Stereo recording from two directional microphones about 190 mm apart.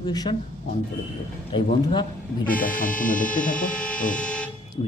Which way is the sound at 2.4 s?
45° left (ahead or behind).